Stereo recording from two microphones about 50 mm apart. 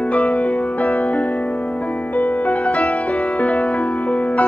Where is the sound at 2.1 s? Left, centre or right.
Left.